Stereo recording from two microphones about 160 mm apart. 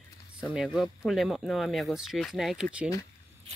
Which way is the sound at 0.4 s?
5° right (ahead or behind).